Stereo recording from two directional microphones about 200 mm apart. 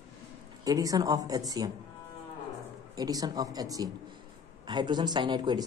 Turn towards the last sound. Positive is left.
turn(degrees=-20)  # may be behind; listen again after turning